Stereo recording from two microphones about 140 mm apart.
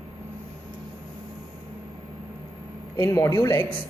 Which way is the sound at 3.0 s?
20° left (ahead or behind).